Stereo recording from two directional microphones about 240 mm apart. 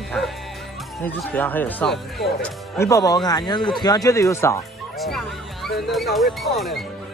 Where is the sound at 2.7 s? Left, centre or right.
Centre.